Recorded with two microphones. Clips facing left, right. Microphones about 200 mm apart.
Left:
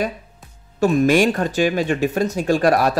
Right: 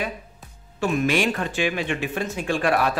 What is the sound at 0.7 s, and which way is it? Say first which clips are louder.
A man's voice: left 7 dB; 40° left (ahead or behind).